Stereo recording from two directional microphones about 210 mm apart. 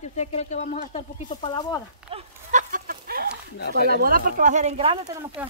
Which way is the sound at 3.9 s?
45° right (ahead or behind).